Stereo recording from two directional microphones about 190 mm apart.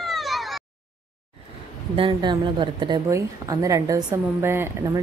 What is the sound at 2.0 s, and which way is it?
A woman's voice, 25° right (ahead or behind).